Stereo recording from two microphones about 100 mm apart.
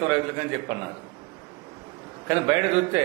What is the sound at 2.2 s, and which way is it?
Speech, 20° right (ahead or behind).